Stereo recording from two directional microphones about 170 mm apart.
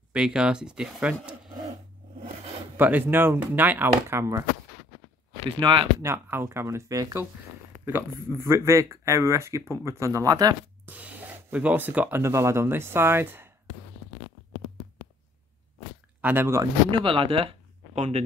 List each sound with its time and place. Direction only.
0.1 s speech: 5° right (ahead or behind)
2.8 s speech: 10° right (ahead or behind)
5.6 s speech: 30° right (ahead or behind)
6.0 s speech: 15° right (ahead or behind)
10.9 s speech: 10° right (ahead or behind)
16.2 s speech: 10° right (ahead or behind)
16.9 s speech: 30° right (ahead or behind)